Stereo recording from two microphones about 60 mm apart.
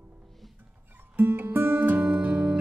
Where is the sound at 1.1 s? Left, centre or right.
Right.